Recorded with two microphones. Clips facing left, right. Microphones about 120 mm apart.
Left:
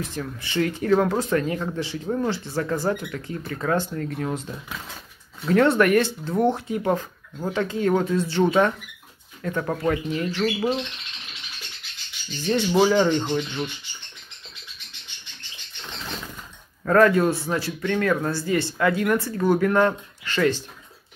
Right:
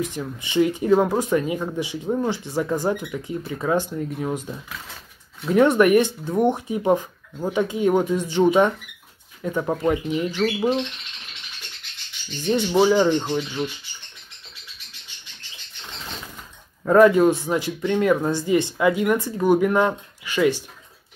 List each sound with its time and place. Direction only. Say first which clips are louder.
0.0 s speech: right 3 dB; 15° right (ahead or behind)
12.7 s speech: right 2 dB; 5° right (ahead or behind)
16.8 s speech: right 3 dB; 15° right (ahead or behind)